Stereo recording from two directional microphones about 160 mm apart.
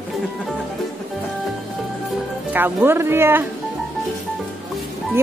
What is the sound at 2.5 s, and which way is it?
Speech, 15° right (ahead or behind).